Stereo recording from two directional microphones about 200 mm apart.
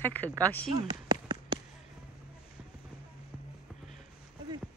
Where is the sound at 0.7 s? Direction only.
20° right (ahead or behind).